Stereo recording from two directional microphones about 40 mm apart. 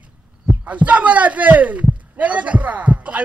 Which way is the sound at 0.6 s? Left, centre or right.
Right.